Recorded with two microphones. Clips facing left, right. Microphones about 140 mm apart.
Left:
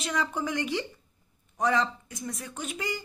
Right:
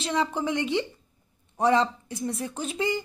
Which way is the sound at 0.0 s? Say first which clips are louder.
Right 4 dB; 25° right (ahead or behind).